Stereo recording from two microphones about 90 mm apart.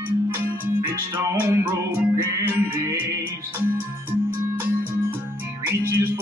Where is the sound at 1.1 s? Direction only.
20° right (ahead or behind).